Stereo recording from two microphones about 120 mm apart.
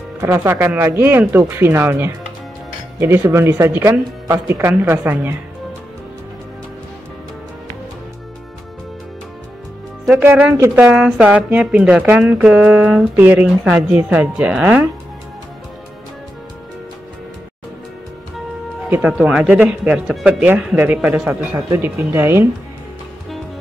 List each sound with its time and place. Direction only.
0.2 s speech: 25° right (ahead or behind)
10.1 s speech: 15° right (ahead or behind)
18.9 s speech: 10° right (ahead or behind)